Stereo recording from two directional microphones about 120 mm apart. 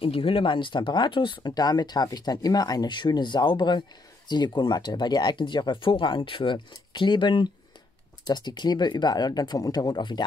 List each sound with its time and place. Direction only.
0.0 s speech: 50° left (ahead or behind)